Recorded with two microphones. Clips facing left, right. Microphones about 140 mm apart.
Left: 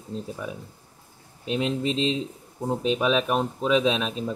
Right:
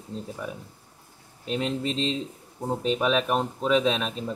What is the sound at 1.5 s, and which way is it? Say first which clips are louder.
Speech: left 2 dB; 15° left (ahead or behind).